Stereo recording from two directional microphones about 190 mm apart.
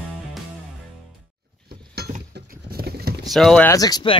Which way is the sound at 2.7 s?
55° right (ahead or behind).